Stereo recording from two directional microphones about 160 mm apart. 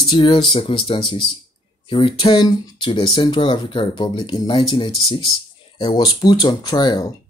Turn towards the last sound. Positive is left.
turn(degrees=25)  # may be behind; listen again after turning